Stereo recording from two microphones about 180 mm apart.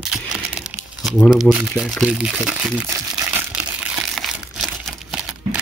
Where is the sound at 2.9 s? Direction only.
15° right (ahead or behind).